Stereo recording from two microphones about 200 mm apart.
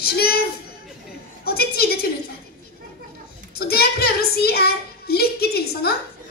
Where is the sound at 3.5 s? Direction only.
50° left (ahead or behind).